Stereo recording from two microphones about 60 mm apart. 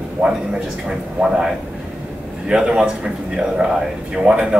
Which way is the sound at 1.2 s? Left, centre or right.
Centre.